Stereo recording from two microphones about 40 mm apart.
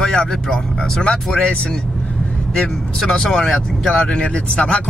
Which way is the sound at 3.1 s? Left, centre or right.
Centre.